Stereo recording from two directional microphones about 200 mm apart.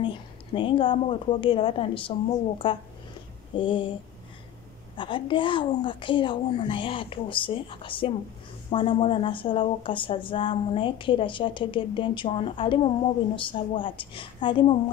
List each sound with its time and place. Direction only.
0.0 s speech: 25° left (ahead or behind)
4.9 s speech: 25° left (ahead or behind)